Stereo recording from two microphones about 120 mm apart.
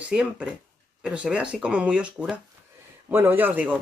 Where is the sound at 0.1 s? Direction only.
10° right (ahead or behind).